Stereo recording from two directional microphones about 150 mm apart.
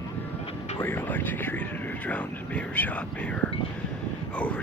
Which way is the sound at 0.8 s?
15° left (ahead or behind).